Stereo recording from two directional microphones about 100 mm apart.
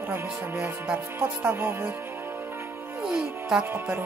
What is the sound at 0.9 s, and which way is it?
Speech, 25° right (ahead or behind).